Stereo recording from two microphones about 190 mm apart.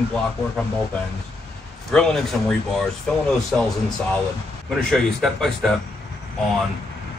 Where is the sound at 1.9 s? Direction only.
5° left (ahead or behind).